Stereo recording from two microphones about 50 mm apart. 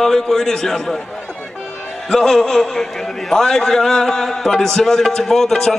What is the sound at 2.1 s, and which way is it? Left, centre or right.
A man's voice, centre.